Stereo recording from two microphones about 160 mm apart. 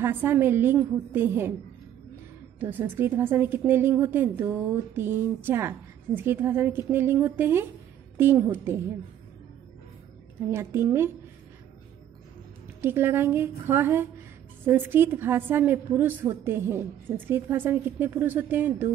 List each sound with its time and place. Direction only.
0.0 s a woman's voice: 15° right (ahead or behind)
2.6 s a woman's voice: 10° right (ahead or behind)
10.5 s a woman's voice: 15° right (ahead or behind)
12.8 s a woman's voice: 15° right (ahead or behind)